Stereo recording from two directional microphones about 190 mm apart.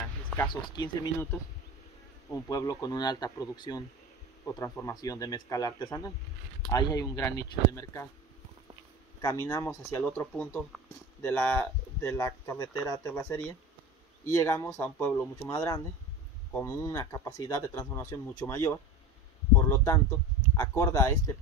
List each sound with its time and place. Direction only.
0.5 s speech: 25° left (ahead or behind)
2.3 s speech: 15° left (ahead or behind)
9.2 s speech: 20° left (ahead or behind)